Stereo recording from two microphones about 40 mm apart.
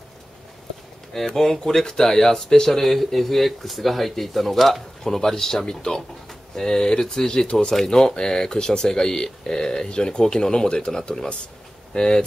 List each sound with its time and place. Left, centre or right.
1.1 s speech: centre